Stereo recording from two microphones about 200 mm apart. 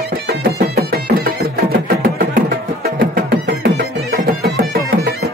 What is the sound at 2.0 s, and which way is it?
Music, 50° right (ahead or behind).